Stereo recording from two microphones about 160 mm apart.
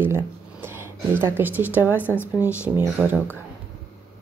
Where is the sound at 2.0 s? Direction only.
15° left (ahead or behind).